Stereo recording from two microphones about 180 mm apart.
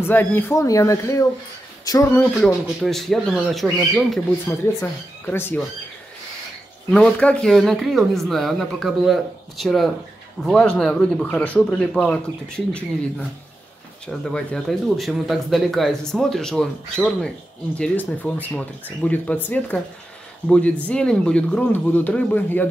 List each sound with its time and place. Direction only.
0.0 s speech: 10° left (ahead or behind)
2.4 s speech: centre (ahead or behind)
4.5 s speech: 10° left (ahead or behind)
6.9 s speech: 5° left (ahead or behind)
14.2 s speech: 5° left (ahead or behind)